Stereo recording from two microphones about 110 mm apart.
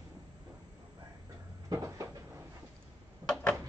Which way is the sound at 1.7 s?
30° right (ahead or behind).